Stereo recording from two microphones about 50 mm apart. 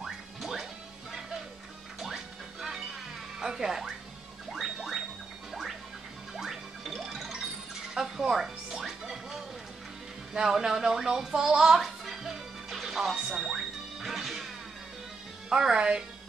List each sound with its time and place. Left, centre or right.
0.0 s music: centre
2.0 s music: centre
5.5 s alarm clock: centre
6.3 s music: centre
15.5 s music: centre